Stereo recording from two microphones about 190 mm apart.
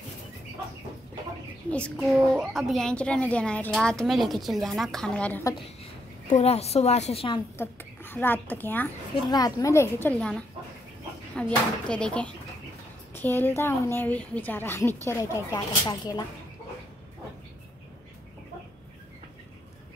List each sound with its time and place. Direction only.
1.7 s a woman's voice: 5° left (ahead or behind)
6.3 s a woman's voice: 35° left (ahead or behind)
7.5 s a woman's voice: 10° left (ahead or behind)
11.3 s a woman's voice: 5° left (ahead or behind)